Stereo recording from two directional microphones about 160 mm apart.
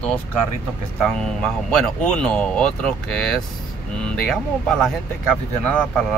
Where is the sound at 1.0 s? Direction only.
5° left (ahead or behind).